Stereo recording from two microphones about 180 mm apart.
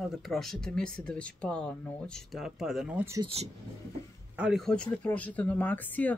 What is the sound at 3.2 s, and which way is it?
Speech, 35° right (ahead or behind).